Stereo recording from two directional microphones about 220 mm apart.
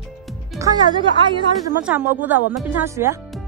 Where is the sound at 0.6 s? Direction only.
15° right (ahead or behind).